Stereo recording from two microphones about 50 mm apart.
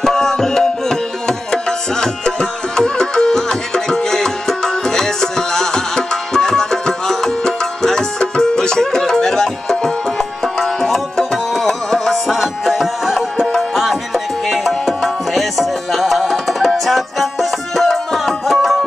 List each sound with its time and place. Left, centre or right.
0.0 s music: centre
12.4 s music: centre